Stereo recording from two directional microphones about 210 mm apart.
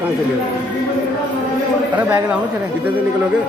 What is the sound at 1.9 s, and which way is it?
Speech, 10° right (ahead or behind).